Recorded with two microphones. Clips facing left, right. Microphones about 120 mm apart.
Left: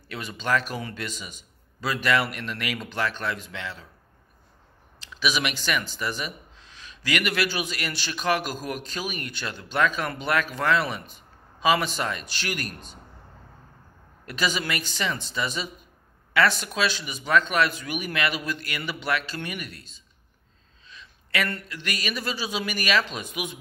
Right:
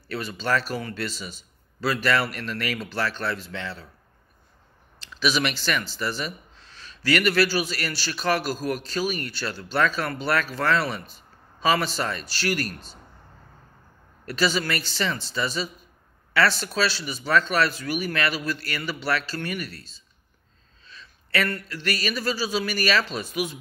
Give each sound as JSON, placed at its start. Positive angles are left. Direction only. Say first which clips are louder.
{"t": 0.1, "sound": "speech", "louder": "right 1 dB", "side_deg": 15}
{"t": 5.0, "sound": "speech", "louder": "right 2 dB", "side_deg": 10}
{"t": 14.2, "sound": "speech", "louder": "right 3 dB", "side_deg": 15}
{"t": 16.6, "sound": "speech", "louder": "right 1 dB", "side_deg": 15}